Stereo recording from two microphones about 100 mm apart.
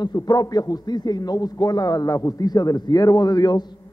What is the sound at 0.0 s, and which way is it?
A man's voice, 40° left (ahead or behind).